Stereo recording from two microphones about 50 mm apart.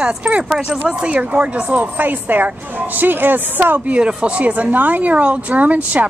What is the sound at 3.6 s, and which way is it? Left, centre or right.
Speech, right.